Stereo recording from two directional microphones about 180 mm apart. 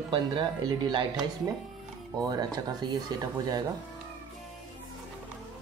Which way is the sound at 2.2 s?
20° right (ahead or behind).